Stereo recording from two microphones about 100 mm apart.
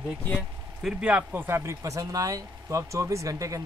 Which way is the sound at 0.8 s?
10° right (ahead or behind).